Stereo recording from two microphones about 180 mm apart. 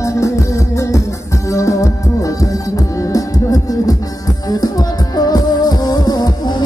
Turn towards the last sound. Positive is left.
turn(degrees=20)  # may be behind; listen again after turning